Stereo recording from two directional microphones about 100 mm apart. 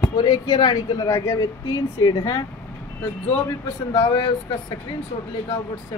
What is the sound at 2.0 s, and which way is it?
Speech, 40° left (ahead or behind).